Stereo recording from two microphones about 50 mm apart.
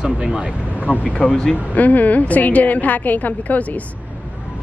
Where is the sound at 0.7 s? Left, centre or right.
Left; by 1.6 s centre.